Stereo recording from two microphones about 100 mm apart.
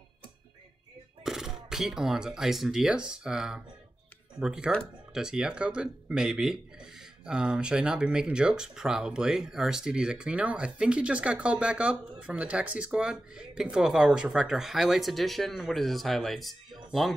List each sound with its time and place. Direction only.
1.2 s speech: 5° right (ahead or behind)